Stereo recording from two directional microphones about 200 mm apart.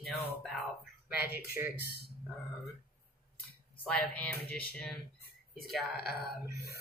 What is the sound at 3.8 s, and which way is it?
A man's voice, 5° left (ahead or behind).